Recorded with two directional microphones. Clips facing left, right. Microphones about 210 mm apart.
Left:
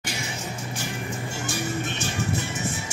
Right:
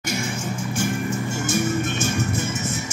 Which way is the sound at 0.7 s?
45° right (ahead or behind).